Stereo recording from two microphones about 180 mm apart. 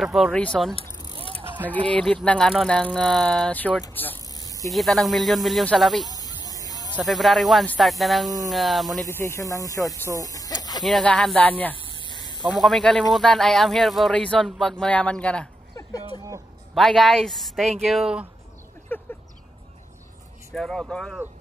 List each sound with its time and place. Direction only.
0.0 s speech: centre (ahead or behind)
1.9 s speech: 5° left (ahead or behind)
4.4 s spray: 20° left (ahead or behind)
4.6 s speech: centre (ahead or behind)
6.1 s a sound: 20° left (ahead or behind)
7.0 s speech: centre (ahead or behind)
9.0 s speech: 15° left (ahead or behind)
10.2 s a sound: 20° left (ahead or behind)
10.8 s speech: centre (ahead or behind)
11.8 s a sound: 25° left (ahead or behind)
12.6 s speech: centre (ahead or behind)
16.7 s speech: centre (ahead or behind)
18.9 s a sound: 10° left (ahead or behind)
20.5 s speech: centre (ahead or behind)